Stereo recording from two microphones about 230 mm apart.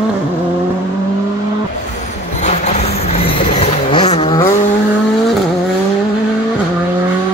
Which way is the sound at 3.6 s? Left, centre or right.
Left.